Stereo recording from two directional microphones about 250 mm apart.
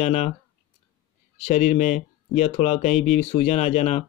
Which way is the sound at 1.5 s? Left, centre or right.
Left.